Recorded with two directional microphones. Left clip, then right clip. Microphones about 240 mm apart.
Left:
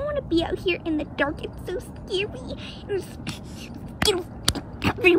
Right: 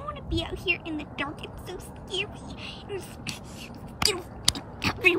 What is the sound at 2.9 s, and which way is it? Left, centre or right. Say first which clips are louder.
Speech: left 9 dB; left.